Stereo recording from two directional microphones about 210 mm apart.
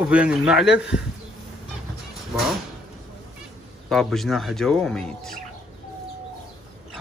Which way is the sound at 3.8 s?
Centre (ahead or behind).